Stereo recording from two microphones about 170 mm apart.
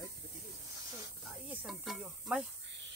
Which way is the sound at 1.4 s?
Centre (ahead or behind).